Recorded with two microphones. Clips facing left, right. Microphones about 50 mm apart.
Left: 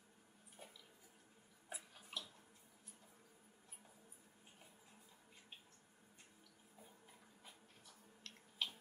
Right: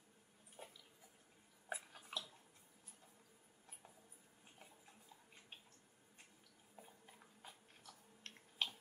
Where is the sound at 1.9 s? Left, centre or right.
Right.